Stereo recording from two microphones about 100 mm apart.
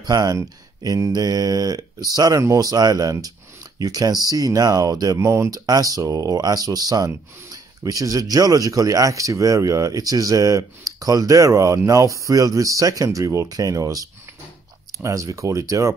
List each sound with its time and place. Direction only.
0.0 s speech: 35° right (ahead or behind)